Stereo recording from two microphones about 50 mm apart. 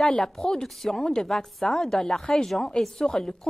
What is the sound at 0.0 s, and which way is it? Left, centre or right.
A woman's voice, centre.